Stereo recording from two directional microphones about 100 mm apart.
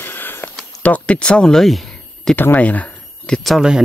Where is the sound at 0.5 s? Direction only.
15° left (ahead or behind).